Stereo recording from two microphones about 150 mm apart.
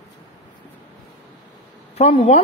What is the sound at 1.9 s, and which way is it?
Speech, 45° left (ahead or behind).